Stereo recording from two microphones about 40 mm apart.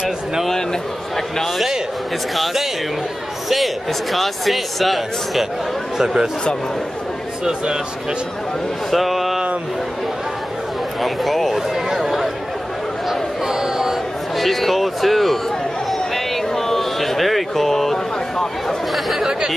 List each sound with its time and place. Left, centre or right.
1.1 s speech: centre
7.4 s speech: centre
8.9 s a sound: centre
11.0 s speech: centre
11.9 s chatter: centre
13.5 s a sound: centre
14.4 s speech: centre
16.5 s a sound: centre
19.0 s chatter: centre